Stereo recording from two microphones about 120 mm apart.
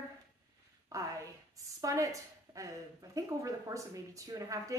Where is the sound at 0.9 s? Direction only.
25° right (ahead or behind).